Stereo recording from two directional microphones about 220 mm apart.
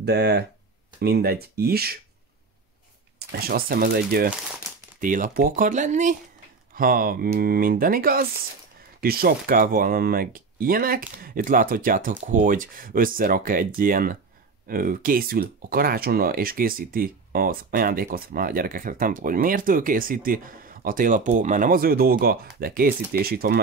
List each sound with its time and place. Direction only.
0.0 s speech: 45° right (ahead or behind)
3.2 s speech: 45° right (ahead or behind)